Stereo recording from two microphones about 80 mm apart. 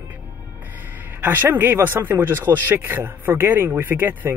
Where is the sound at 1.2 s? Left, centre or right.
Right.